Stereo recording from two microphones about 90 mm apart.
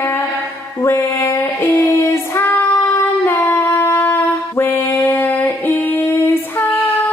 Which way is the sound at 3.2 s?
25° left (ahead or behind).